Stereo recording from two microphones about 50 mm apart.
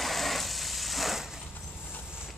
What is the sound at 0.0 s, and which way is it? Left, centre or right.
Sewing machine, centre.